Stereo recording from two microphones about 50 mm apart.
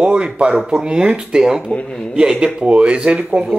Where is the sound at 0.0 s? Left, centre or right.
Right.